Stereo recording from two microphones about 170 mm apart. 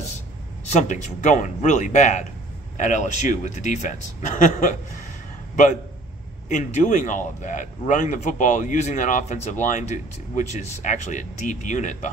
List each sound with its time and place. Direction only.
0.7 s speech: 45° left (ahead or behind)
6.5 s speech: 45° left (ahead or behind)